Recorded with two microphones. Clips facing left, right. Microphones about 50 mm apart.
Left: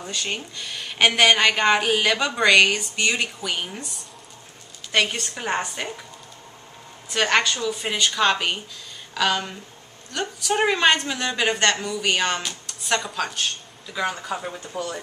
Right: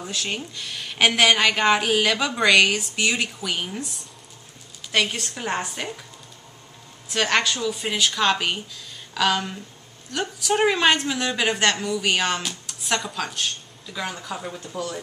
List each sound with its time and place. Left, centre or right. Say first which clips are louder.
0.0 s a woman's voice: even; centre
7.1 s a woman's voice: left 1 dB; centre